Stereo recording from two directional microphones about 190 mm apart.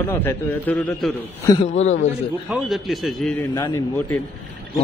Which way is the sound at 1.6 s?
40° left (ahead or behind).